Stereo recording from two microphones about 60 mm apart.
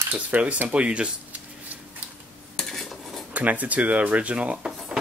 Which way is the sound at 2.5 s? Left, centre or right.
Centre.